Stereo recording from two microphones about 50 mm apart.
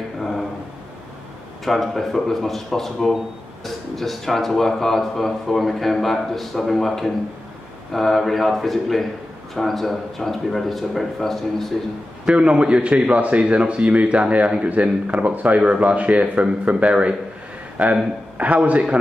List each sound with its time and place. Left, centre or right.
0.2 s a sound: centre
1.6 s a man's voice: centre
12.3 s a man's voice: right